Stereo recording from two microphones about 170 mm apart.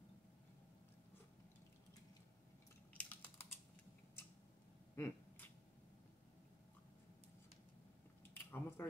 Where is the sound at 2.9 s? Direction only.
10° left (ahead or behind).